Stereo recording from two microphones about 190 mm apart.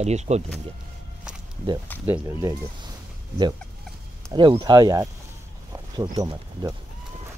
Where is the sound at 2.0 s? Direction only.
15° right (ahead or behind).